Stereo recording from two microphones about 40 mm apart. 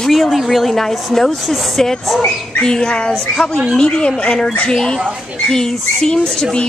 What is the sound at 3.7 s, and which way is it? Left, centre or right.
Speech, left.